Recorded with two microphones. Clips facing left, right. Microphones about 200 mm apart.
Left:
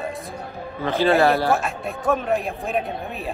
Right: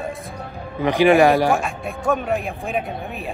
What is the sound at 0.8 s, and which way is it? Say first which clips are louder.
Speech: right 4 dB; 15° right (ahead or behind).